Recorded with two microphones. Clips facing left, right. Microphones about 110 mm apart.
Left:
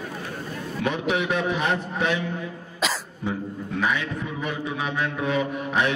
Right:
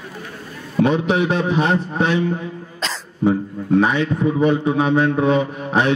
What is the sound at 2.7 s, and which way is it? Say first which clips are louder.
Cough: left 3 dB; 10° left (ahead or behind).